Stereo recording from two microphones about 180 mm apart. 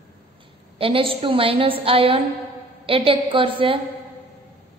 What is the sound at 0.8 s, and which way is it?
A woman's voice, 30° right (ahead or behind).